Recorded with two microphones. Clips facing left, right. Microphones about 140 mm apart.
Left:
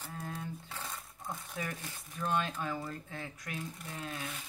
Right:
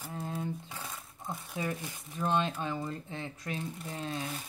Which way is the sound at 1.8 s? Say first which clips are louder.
Right 4 dB; 25° right (ahead or behind).